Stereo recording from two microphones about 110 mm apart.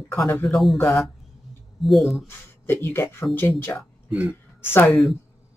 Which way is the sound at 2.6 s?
20° left (ahead or behind).